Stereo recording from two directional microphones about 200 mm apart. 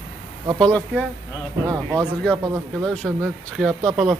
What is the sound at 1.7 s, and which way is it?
Speech, 20° right (ahead or behind).